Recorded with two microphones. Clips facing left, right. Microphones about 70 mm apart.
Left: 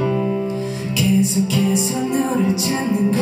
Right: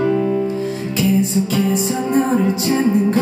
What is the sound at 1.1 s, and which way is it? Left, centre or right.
Music, right.